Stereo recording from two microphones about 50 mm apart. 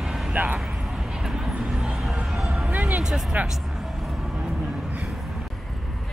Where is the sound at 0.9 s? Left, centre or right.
Centre.